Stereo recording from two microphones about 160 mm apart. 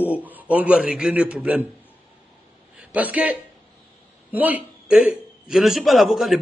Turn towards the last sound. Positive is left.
turn(degrees=0)  # may be behind; listen again after turning